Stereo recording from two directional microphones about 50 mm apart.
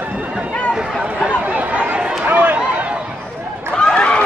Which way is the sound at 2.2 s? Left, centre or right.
Right.